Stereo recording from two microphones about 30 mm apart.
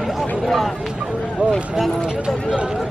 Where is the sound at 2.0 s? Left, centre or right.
Right.